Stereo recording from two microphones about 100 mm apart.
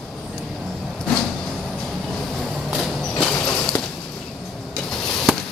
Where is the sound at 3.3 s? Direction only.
20° left (ahead or behind).